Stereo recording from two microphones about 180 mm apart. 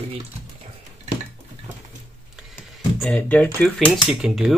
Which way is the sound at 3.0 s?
5° left (ahead or behind).